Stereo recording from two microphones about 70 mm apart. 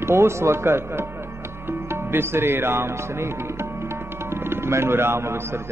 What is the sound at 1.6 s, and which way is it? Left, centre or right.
Music, right.